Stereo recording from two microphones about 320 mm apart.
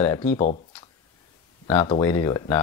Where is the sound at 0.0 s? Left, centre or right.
Centre.